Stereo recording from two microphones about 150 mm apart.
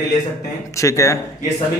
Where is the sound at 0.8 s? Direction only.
20° left (ahead or behind).